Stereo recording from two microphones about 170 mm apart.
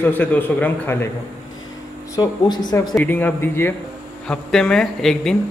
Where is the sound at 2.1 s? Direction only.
25° left (ahead or behind).